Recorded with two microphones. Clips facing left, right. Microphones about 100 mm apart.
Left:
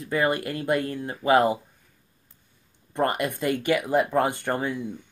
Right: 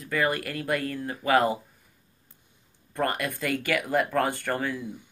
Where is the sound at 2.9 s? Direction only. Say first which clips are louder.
Left 3 dB; 20° left (ahead or behind).